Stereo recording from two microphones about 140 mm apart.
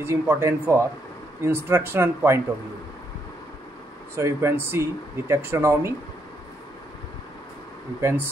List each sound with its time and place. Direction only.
0.0 s speech: 20° right (ahead or behind)
4.1 s speech: 20° right (ahead or behind)
8.0 s speech: 15° right (ahead or behind)